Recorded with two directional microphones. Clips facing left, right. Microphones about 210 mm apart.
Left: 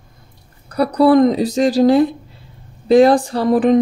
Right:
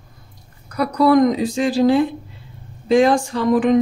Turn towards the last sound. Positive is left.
turn(degrees=35)  # may be behind; listen again after turning